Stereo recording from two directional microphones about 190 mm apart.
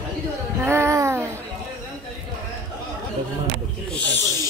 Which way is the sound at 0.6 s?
15° right (ahead or behind).